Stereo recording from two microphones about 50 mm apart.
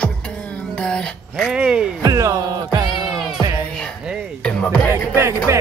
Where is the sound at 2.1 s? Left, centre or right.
Right.